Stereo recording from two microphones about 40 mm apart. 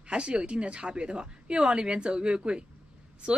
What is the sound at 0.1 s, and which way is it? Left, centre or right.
Speech, right.